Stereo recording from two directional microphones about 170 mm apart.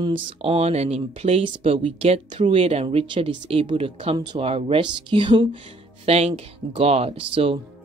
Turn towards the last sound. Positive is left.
turn(degrees=-30)  # may be behind; listen again after turning